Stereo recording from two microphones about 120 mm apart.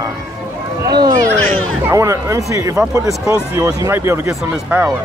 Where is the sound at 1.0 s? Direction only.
30° right (ahead or behind).